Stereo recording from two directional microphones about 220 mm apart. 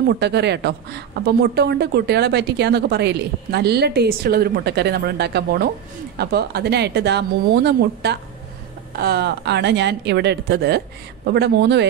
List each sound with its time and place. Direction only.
0.2 s speech: 50° right (ahead or behind)